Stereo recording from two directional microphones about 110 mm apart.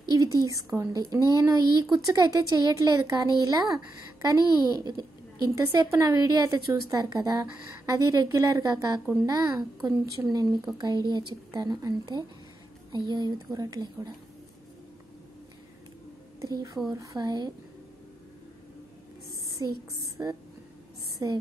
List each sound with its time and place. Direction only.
0.1 s a woman's voice: 35° right (ahead or behind)
16.3 s a woman's voice: 35° right (ahead or behind)
19.6 s a woman's voice: 35° right (ahead or behind)